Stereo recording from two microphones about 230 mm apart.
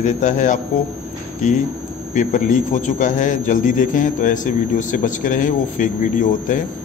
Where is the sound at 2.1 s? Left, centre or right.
Left.